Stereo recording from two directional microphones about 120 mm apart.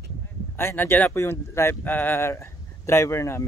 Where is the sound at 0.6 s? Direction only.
20° left (ahead or behind).